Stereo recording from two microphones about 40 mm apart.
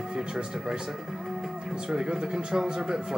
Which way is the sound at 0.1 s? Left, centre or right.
Centre.